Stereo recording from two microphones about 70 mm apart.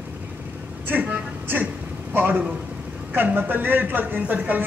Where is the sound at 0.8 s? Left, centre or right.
Right.